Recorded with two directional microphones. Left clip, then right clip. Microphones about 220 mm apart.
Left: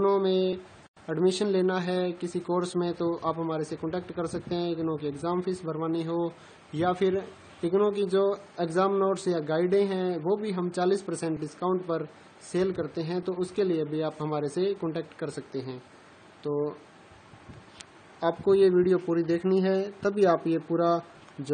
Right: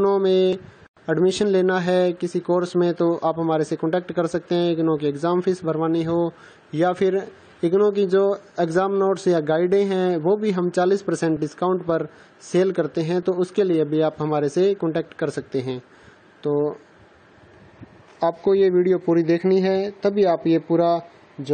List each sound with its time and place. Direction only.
0.0 s speech: 30° right (ahead or behind)
18.2 s speech: 25° right (ahead or behind)